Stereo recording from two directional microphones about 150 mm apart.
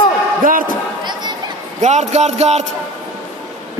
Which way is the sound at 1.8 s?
50° right (ahead or behind).